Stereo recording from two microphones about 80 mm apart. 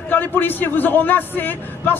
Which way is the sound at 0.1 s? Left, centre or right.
Left.